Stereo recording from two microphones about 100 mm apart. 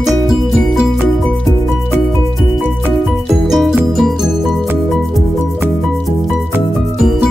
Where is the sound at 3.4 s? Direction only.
Centre (ahead or behind).